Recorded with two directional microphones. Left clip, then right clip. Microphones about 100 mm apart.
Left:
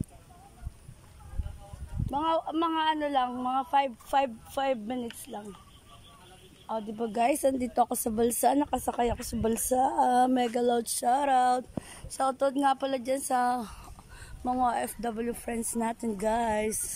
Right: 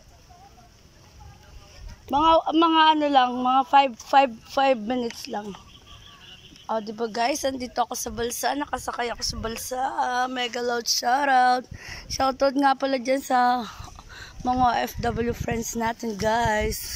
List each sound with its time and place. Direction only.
2.0 s a man's voice: 10° right (ahead or behind)
6.7 s a woman's voice: centre (ahead or behind)
7.1 s speech: 25° left (ahead or behind)
7.9 s speech: 60° left (ahead or behind)
9.5 s speech: 80° left; by 10.6 s 60° left (ahead or behind)
10.6 s speech: 35° left (ahead or behind)
11.1 s speech: 20° left (ahead or behind)
11.8 s a woman's voice: centre (ahead or behind)